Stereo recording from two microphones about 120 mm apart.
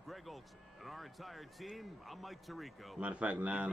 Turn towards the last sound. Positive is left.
turn(degrees=-10)  # may be behind; listen again after turning